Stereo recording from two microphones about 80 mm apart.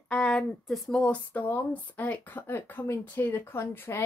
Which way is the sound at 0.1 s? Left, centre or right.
Centre.